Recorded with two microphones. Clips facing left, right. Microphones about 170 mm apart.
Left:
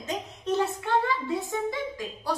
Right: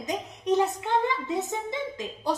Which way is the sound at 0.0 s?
15° right (ahead or behind).